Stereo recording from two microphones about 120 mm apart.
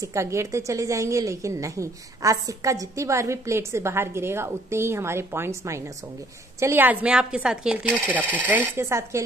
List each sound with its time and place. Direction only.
0.0 s a woman's voice: 25° right (ahead or behind)